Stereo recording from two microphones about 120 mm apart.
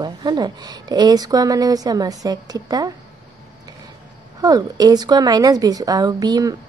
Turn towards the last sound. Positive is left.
turn(degrees=-30)  # may be behind; listen again after turning